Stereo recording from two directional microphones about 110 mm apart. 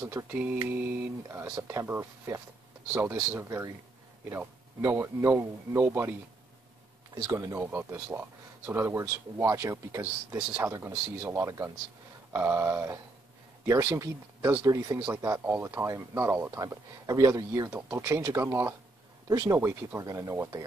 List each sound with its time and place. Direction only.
0.3 s mantra: 15° right (ahead or behind)
0.7 s speech: 15° right (ahead or behind)
7.2 s speech: 30° right (ahead or behind)
7.5 s speech: 20° right (ahead or behind)
10.8 s speech: 20° right (ahead or behind)
16.6 s speech: 35° right (ahead or behind)
19.2 s speech: 40° right (ahead or behind)
19.5 s speech: 25° right (ahead or behind)